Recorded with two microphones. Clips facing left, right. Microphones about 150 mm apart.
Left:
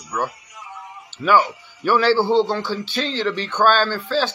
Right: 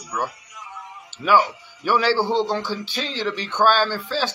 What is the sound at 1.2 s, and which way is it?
A man's voice, 10° right (ahead or behind).